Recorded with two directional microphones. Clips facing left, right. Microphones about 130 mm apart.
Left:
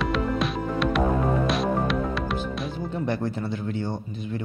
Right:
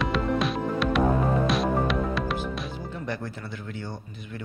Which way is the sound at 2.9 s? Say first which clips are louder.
Left 8 dB; 25° left (ahead or behind).